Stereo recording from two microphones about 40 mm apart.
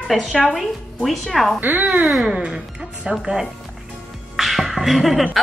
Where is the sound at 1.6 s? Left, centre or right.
Right.